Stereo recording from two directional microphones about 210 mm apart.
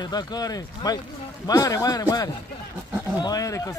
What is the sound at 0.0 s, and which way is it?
Speech, 20° left (ahead or behind).